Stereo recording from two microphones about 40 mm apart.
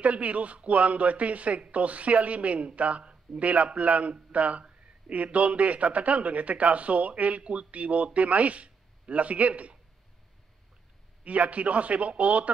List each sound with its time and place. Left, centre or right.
0.0 s a man's voice: right
11.2 s a man's voice: right